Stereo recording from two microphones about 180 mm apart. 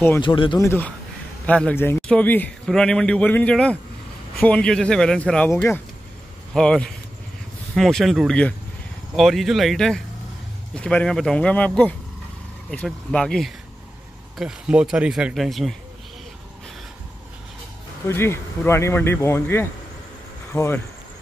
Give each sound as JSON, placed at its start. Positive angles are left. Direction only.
{"t": 0.2, "sound": "speech", "side_deg": 25}
{"t": 0.7, "sound": "a man's voice", "side_deg": 10}
{"t": 18.0, "sound": "a man's voice", "side_deg": 15}